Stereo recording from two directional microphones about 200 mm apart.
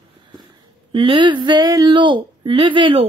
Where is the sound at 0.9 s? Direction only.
25° right (ahead or behind).